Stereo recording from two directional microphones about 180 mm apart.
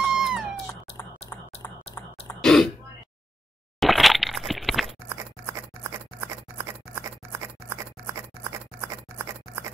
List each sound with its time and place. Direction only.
0.0 s cat: 5° right (ahead or behind)
2.4 s throat clearing: centre (ahead or behind)
3.8 s a sound: centre (ahead or behind)
5.1 s scissors: 15° right (ahead or behind)